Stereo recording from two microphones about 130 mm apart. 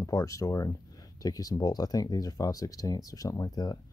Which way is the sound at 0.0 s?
25° left (ahead or behind).